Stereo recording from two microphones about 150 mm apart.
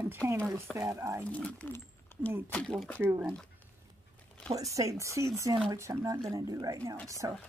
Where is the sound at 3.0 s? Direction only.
15° right (ahead or behind).